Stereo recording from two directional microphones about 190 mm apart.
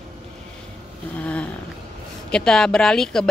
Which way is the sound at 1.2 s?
5° left (ahead or behind).